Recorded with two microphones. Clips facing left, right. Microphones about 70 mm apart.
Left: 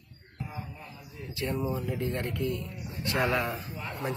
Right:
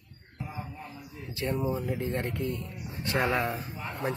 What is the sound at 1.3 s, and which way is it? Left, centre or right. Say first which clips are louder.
Speech: right 1 dB; right.